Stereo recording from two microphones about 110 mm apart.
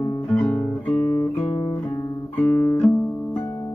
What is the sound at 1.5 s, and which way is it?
Guitar, 50° left (ahead or behind).